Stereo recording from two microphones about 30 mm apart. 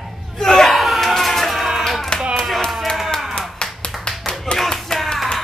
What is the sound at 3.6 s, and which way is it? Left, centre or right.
Clapping, left.